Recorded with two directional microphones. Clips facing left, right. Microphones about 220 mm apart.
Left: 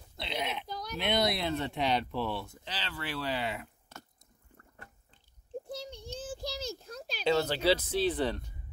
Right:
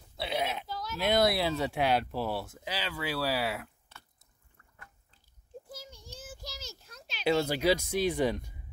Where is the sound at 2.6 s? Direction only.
10° right (ahead or behind).